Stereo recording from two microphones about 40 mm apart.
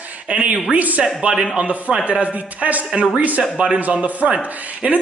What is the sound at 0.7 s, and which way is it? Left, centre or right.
Speech, right.